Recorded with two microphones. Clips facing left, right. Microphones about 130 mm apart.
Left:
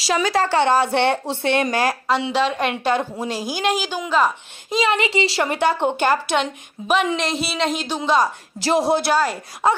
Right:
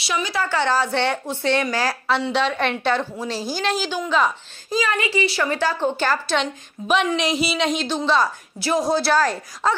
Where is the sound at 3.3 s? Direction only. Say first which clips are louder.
Left 1 dB; 50° left (ahead or behind).